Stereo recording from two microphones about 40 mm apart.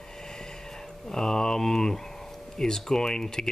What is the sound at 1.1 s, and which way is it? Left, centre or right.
Speech, centre.